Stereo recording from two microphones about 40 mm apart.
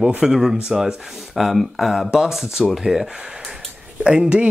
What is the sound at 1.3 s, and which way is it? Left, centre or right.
Speech, centre.